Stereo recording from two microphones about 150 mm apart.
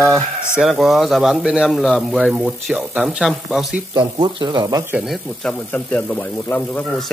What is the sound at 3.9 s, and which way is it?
Speech, 30° right (ahead or behind).